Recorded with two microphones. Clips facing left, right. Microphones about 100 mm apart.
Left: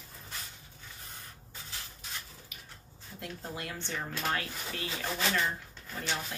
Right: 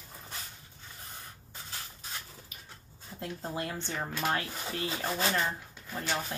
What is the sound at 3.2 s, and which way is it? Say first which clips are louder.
A woman's voice: right 4 dB; 30° right (ahead or behind).